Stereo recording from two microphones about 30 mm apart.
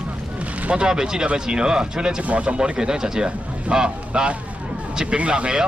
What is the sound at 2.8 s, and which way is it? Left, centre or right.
A man's voice, right.